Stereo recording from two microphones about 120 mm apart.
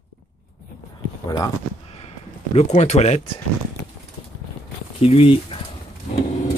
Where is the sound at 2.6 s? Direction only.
65° left (ahead or behind).